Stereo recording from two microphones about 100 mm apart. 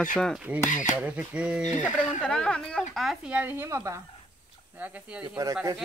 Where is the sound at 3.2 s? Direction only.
15° right (ahead or behind).